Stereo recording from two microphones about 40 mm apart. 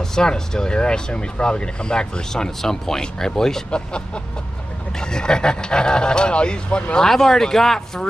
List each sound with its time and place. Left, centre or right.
0.0 s speech: centre
3.7 s speech: left
7.0 s speech: centre